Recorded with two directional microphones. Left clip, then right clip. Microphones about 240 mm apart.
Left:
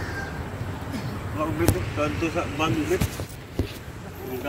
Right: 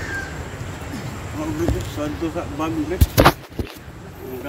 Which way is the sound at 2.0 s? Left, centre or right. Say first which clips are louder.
Even; centre.